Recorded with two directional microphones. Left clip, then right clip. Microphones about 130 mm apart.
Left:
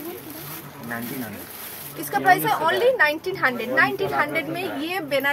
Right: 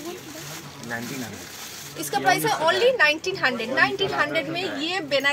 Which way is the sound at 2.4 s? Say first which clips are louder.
Even; 15° right (ahead or behind).